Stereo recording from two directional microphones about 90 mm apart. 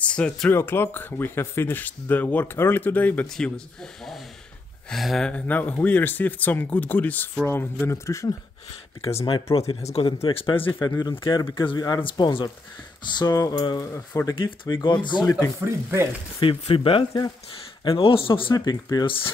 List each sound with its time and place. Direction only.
0.0 s speech: 15° left (ahead or behind)
0.5 s speech: 25° left (ahead or behind)
3.3 s speech: 5° left (ahead or behind); by 8.4 s 35° left (ahead or behind)
9.0 s speech: 70° left (ahead or behind)
10.0 s speech: 75° left (ahead or behind)
10.9 s speech: 45° left (ahead or behind)
12.0 s speech: 70° left (ahead or behind)
13.0 s speech: 50° left (ahead or behind)
14.3 s speech: 65° left (ahead or behind)
15.6 s speech: 30° right (ahead or behind)
16.3 s speech: 85° left
17.8 s speech: 70° left (ahead or behind)
18.5 s speech: 45° left (ahead or behind)